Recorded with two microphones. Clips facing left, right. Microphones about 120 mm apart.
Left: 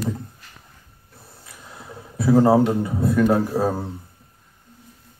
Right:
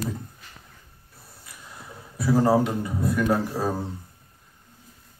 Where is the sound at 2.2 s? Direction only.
25° left (ahead or behind).